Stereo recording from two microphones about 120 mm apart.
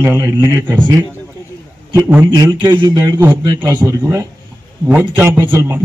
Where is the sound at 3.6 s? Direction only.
15° right (ahead or behind).